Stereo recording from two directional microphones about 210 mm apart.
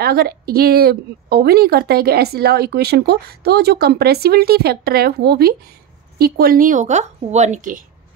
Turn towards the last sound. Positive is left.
turn(degrees=-35)  # may be behind; listen again after turning